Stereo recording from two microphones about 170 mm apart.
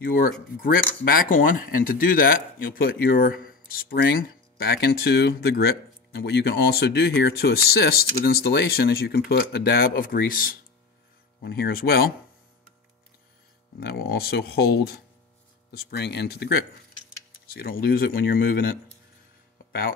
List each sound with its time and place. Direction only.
0.0 s speech: 55° left (ahead or behind)
13.7 s speech: 65° left (ahead or behind)